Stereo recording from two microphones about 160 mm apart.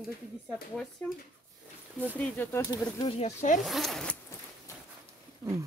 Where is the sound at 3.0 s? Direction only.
40° left (ahead or behind).